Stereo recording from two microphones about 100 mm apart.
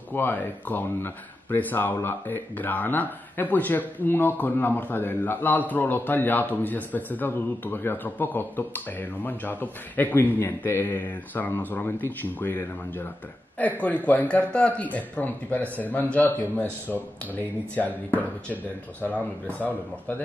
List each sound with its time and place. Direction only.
0.1 s a man's voice: 20° left (ahead or behind)